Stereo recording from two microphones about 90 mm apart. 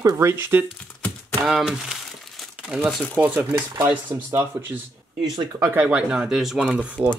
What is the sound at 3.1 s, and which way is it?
Speech, 20° right (ahead or behind).